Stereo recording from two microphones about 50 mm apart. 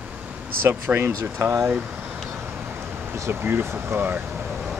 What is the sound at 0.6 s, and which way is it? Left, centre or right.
Speech, right.